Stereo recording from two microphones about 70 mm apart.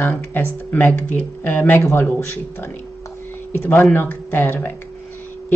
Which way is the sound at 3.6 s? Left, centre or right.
Left.